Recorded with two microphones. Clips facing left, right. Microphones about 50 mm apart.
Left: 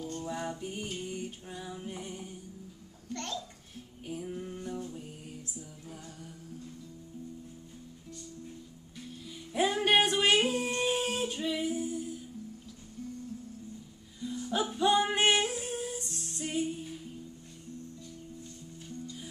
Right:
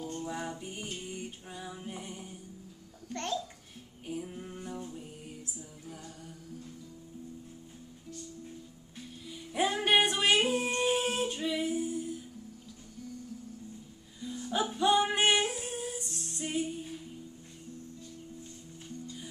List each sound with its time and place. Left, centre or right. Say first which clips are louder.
0.2 s music: left 1 dB; centre
3.1 s a child's voice: right 3 dB; right
4.0 s a sound: left 1 dB; centre
9.2 s music: left 1 dB; centre
14.2 s music: even; centre